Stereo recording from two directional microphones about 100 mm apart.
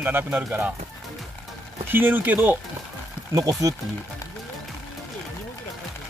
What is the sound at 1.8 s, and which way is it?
Speech, 20° right (ahead or behind).